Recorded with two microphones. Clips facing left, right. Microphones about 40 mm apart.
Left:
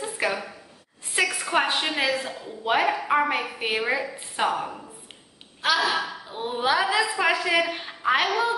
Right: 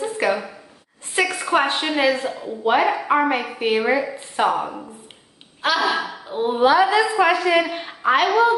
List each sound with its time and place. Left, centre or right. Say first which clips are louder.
0.0 s a sound: right 6 dB; centre
1.1 s a woman's voice: right 4 dB; centre
8.3 s a woman's voice: right 8 dB; centre